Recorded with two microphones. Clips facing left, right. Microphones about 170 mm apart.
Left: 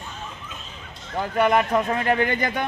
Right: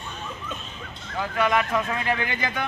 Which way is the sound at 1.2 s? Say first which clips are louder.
Left 4 dB; 45° left (ahead or behind).